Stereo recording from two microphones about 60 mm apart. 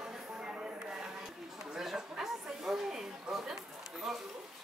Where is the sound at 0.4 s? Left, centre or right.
Centre.